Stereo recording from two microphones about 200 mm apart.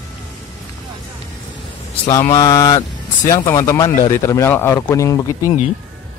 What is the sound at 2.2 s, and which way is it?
Speech, 15° left (ahead or behind).